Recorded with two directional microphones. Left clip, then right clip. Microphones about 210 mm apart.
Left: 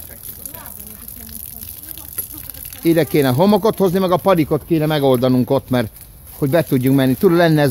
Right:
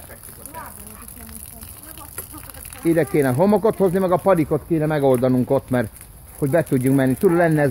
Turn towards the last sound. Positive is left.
turn(degrees=25)  # may be behind; listen again after turning